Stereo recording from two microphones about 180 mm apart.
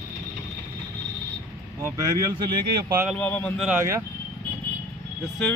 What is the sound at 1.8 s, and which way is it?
Speech, 20° right (ahead or behind).